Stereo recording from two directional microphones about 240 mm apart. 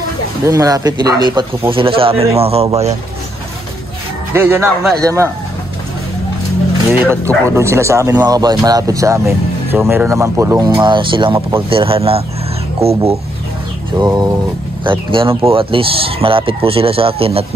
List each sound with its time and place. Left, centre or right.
0.5 s speech: centre
4.3 s speech: centre
6.9 s speech: centre